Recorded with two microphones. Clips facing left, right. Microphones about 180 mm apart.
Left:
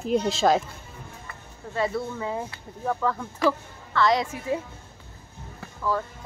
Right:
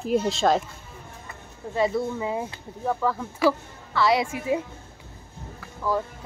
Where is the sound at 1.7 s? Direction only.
15° right (ahead or behind).